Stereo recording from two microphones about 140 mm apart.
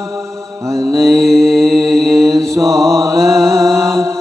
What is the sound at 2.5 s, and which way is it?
Mantra, centre (ahead or behind).